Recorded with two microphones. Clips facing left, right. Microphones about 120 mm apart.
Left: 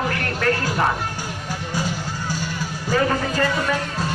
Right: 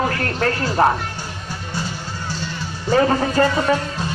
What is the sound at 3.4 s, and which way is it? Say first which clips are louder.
Speech: right 6 dB; 35° right (ahead or behind).